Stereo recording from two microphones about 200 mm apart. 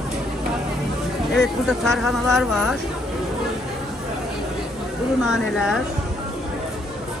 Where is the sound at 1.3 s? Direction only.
Centre (ahead or behind).